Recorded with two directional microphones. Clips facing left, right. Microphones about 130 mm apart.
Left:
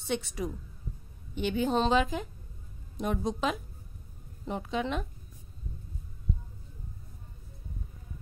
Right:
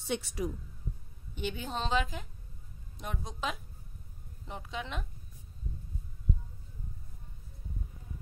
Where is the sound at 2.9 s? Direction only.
55° left (ahead or behind).